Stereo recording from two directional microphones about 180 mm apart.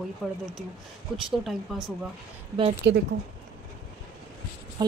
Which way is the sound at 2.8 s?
75° right (ahead or behind).